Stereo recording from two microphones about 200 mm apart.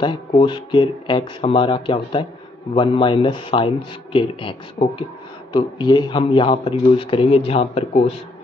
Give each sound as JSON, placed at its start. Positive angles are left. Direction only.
{"t": 0.0, "sound": "speech", "side_deg": 25}